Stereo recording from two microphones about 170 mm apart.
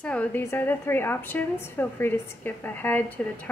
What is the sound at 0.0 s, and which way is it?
A woman's voice, 10° left (ahead or behind).